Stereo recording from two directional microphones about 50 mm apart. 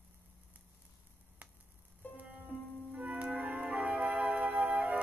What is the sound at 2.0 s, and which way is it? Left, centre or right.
Music, left.